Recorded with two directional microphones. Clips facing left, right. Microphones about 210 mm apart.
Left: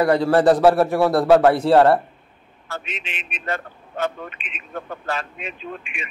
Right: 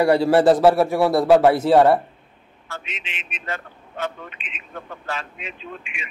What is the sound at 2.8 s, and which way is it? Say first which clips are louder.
A man's voice: left 3 dB; 50° left (ahead or behind).